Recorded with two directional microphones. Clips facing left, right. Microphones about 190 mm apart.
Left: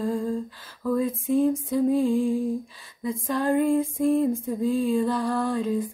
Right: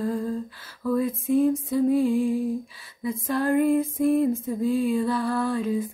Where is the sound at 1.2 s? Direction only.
Centre (ahead or behind).